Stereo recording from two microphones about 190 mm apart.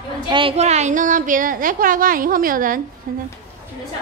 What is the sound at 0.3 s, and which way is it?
A woman's voice, 30° right (ahead or behind).